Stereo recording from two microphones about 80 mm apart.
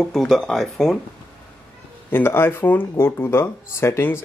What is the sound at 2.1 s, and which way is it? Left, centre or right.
Speech, left.